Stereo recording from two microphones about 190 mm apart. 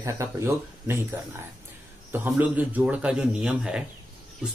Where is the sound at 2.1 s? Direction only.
10° right (ahead or behind).